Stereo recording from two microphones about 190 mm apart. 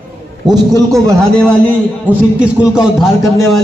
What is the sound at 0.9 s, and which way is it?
Speech, 5° left (ahead or behind).